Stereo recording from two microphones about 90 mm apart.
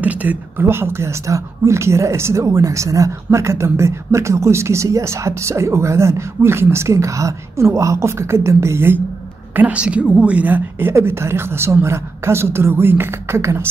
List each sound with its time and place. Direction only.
0.0 s speech: 15° right (ahead or behind)
9.6 s a woman's voice: 15° right (ahead or behind); by 13.7 s 30° right (ahead or behind)